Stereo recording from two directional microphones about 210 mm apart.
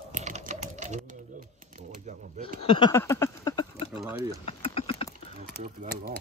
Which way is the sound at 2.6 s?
25° left (ahead or behind).